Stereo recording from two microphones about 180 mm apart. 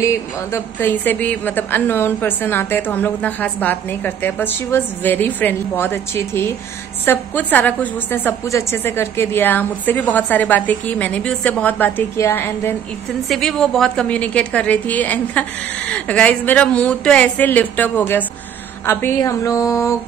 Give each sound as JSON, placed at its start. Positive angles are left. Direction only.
{"t": 0.0, "sound": "a woman's voice", "side_deg": 15}
{"t": 13.3, "sound": "a woman's voice", "side_deg": 0}